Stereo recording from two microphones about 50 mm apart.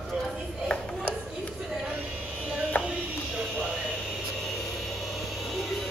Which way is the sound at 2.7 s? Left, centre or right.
Left.